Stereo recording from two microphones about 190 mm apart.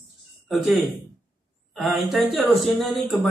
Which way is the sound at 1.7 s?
Centre (ahead or behind).